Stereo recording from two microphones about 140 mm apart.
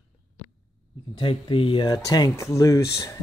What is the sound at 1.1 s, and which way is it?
Speech, 40° left (ahead or behind).